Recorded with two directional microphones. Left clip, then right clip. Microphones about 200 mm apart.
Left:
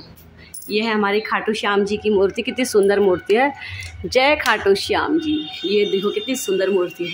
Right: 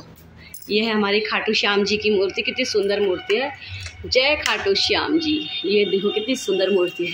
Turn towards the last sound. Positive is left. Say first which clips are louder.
# even
turn(degrees=10)  # may be behind; listen again after turning